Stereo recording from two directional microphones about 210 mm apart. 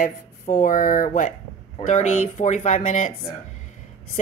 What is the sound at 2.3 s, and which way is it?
Speech, 35° left (ahead or behind).